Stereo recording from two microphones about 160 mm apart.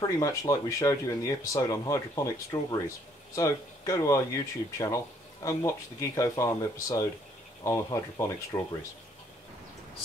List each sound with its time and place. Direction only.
0.0 s speech: 20° left (ahead or behind)
3.3 s speech: 20° left (ahead or behind)